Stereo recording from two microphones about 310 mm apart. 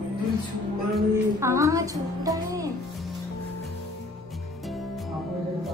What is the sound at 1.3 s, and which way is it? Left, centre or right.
Music, centre.